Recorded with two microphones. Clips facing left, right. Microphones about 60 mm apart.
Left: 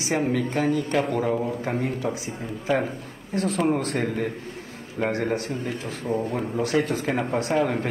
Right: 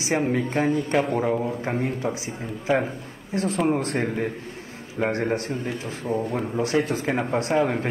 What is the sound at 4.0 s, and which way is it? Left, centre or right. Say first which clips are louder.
A man's voice: even; right.